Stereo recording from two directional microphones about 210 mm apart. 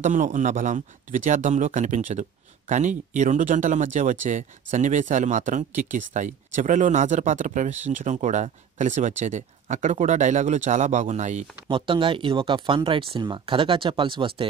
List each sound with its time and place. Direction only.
0.0 s speech: 35° right (ahead or behind)